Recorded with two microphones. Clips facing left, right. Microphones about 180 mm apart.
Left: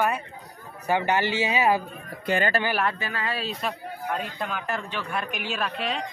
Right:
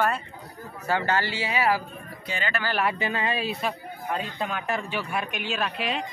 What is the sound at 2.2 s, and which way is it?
Speech, 55° left (ahead or behind).